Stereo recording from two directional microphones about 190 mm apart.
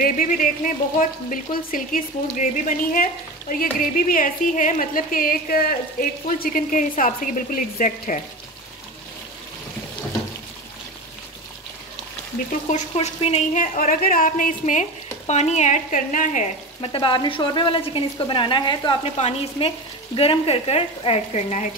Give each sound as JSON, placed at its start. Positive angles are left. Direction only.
{"t": 0.0, "sound": "speech", "side_deg": 45}
{"t": 12.6, "sound": "a woman's voice", "side_deg": 40}
{"t": 16.8, "sound": "a woman's voice", "side_deg": 25}